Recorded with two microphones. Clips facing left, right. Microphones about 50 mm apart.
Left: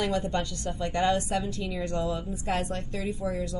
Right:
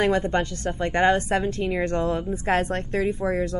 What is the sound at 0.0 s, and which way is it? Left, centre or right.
A woman's voice, right.